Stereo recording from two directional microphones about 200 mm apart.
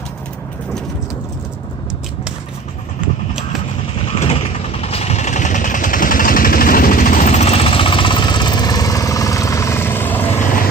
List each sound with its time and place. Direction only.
4.2 s vehicle: 30° left (ahead or behind); by 10.3 s 10° left (ahead or behind)